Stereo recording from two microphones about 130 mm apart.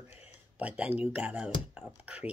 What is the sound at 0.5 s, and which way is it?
Speech, 10° right (ahead or behind).